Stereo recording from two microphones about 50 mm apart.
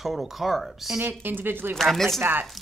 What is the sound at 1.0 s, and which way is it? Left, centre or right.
Speech, right.